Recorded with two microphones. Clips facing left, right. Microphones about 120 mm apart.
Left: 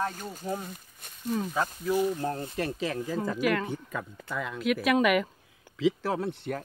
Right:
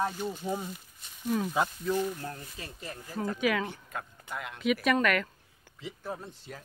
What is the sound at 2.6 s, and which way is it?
Speech, 80° left.